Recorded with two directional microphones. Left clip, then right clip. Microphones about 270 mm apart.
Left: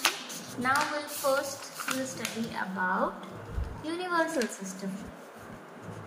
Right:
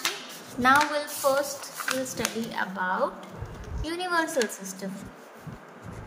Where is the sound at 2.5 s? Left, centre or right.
Right.